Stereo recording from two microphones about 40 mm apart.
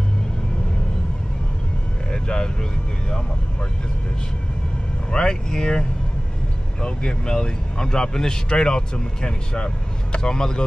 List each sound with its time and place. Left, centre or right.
2.0 s vehicle: left
5.1 s speech: centre